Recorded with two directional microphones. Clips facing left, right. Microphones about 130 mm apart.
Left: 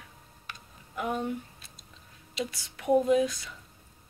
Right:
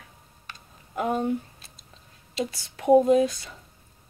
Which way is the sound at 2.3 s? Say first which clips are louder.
Right 5 dB; 35° right (ahead or behind).